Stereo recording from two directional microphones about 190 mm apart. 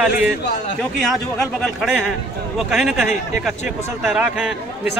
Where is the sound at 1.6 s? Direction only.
Centre (ahead or behind).